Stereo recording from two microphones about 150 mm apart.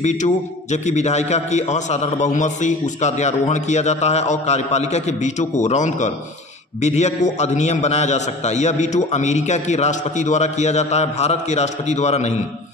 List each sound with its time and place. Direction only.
0.0 s a man's voice: 50° left (ahead or behind)